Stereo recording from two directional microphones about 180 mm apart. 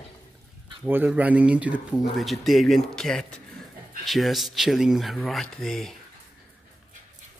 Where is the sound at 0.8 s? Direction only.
10° right (ahead or behind).